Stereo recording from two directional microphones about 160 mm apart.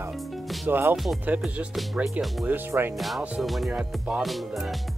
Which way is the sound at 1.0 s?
Centre (ahead or behind).